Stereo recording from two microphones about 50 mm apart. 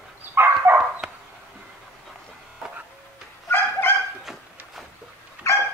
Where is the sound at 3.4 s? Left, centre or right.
Left.